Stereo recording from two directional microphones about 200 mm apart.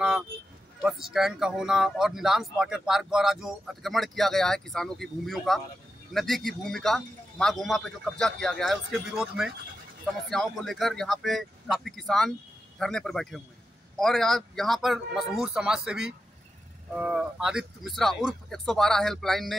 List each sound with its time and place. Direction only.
0.8 s speech: centre (ahead or behind)
10.3 s speech: centre (ahead or behind)